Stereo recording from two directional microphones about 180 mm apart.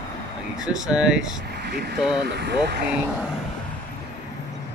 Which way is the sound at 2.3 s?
70° right (ahead or behind).